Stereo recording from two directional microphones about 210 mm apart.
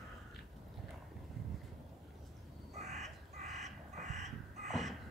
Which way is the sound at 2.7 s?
30° right (ahead or behind).